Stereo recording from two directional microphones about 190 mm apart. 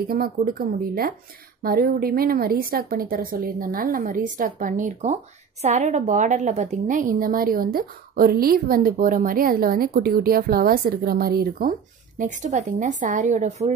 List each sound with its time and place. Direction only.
0.1 s a woman's voice: 50° right (ahead or behind)